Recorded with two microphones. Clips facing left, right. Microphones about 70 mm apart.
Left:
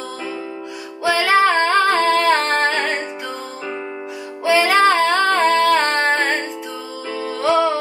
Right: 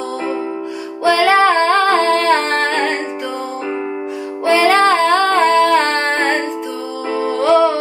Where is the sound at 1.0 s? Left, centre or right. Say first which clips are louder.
Right 4 dB; centre.